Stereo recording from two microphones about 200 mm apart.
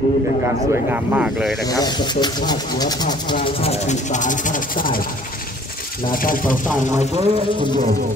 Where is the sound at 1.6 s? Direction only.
20° left (ahead or behind); by 6.5 s 45° left (ahead or behind).